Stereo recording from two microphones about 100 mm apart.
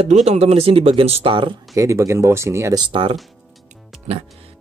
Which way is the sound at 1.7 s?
30° right (ahead or behind).